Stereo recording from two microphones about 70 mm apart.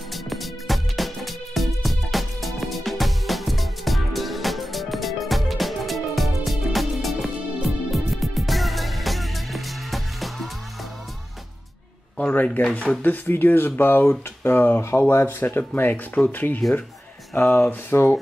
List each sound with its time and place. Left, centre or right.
0.1 s music: centre
12.4 s speech: left